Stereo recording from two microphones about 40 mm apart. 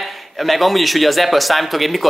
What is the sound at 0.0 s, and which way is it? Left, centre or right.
A man's voice, centre.